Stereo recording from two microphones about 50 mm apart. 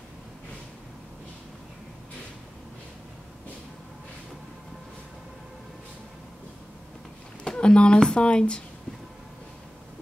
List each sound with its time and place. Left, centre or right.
7.4 s a woman's voice: centre